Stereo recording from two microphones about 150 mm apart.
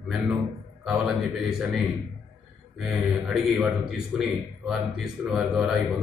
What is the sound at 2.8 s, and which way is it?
Speech, 5° right (ahead or behind).